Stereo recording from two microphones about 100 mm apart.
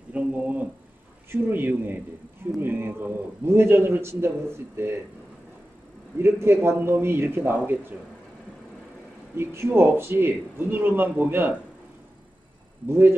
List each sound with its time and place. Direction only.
0.1 s a man's voice: 15° right (ahead or behind)
6.1 s a man's voice: 25° right (ahead or behind)
9.4 s a man's voice: 25° right (ahead or behind)
12.8 s a man's voice: 20° right (ahead or behind)